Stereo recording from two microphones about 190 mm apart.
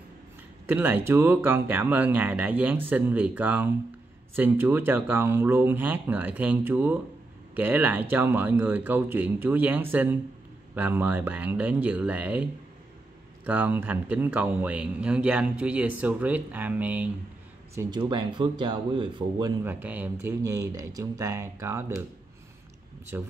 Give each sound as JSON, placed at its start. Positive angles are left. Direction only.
{"t": 0.7, "sound": "speech", "side_deg": -10}
{"t": 13.5, "sound": "speech", "side_deg": -10}
{"t": 17.7, "sound": "speech", "side_deg": -20}
{"t": 19.6, "sound": "speech", "side_deg": -10}